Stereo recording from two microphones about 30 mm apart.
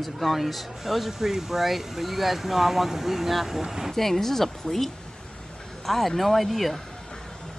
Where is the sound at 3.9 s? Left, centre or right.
Centre.